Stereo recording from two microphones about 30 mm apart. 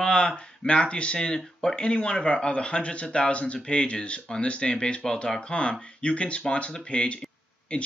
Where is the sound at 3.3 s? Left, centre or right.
Left.